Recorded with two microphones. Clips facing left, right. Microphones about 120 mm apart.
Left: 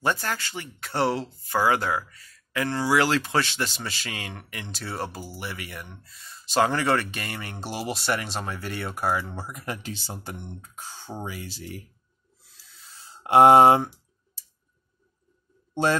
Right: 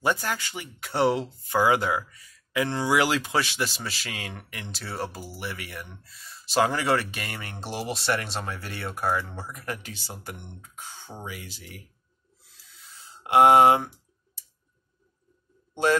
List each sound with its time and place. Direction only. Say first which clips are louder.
0.0 s speech: even; 10° right (ahead or behind); by 9.8 s 15° left (ahead or behind)
9.8 s speech: left 4 dB; 25° left (ahead or behind)
13.2 s speech: left 2 dB; 30° left (ahead or behind)
15.7 s a man's voice: right 1 dB; 30° left (ahead or behind)